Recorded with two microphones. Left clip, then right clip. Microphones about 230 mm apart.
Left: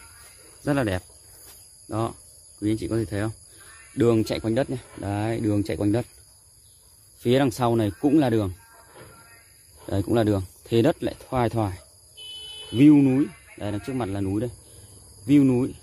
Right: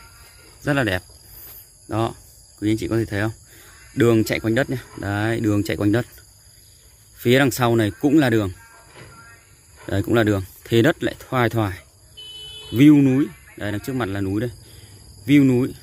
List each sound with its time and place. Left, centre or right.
0.6 s speech: centre
7.2 s speech: centre
9.8 s speech: centre
12.2 s a sound: right
12.7 s speech: centre